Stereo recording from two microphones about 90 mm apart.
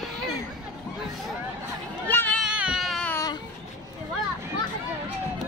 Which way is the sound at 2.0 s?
20° left (ahead or behind).